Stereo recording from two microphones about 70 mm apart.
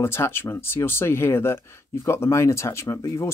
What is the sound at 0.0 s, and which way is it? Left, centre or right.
Speech, left.